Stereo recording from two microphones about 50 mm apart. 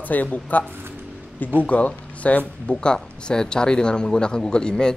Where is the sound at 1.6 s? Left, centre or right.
Left.